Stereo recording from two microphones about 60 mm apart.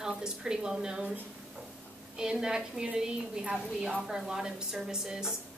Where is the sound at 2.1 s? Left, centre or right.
Centre.